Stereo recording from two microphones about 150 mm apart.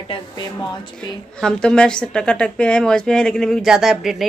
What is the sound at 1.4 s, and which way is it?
A woman's voice, 5° left (ahead or behind).